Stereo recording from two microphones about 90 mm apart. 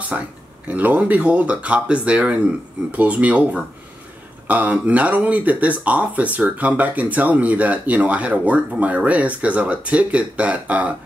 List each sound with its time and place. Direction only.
0.1 s speech: 10° right (ahead or behind)